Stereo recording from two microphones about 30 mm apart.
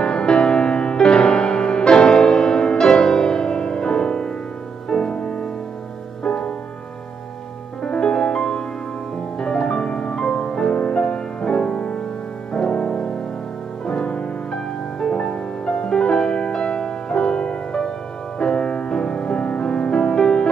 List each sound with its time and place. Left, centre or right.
0.0 s music: left
6.2 s music: left
8.0 s music: left